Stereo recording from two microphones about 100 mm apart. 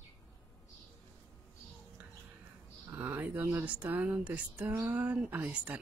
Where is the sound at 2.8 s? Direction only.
20° right (ahead or behind).